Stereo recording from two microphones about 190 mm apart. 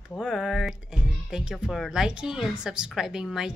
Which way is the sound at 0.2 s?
Centre (ahead or behind).